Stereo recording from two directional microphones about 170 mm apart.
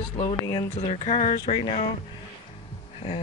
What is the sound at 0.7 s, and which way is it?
Speech, 40° left (ahead or behind).